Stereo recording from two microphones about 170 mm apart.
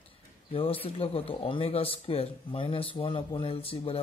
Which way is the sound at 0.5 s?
35° left (ahead or behind).